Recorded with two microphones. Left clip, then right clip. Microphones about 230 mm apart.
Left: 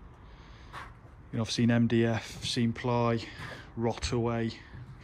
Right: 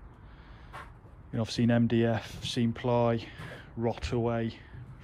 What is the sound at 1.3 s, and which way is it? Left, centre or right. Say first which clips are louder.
Speech: even; centre.